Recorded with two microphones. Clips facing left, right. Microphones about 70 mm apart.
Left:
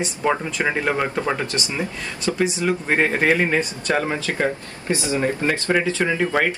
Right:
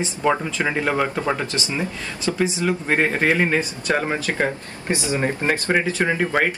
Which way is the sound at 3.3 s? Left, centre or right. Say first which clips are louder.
Even; centre.